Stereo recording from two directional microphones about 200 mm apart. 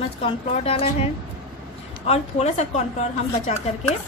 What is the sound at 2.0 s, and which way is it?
Speech, 35° left (ahead or behind).